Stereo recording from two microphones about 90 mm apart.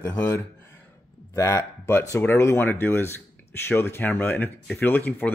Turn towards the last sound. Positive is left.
turn(degrees=20)  # may be behind; listen again after turning